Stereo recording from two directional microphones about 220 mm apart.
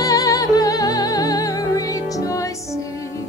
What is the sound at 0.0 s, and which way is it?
Music, 15° left (ahead or behind).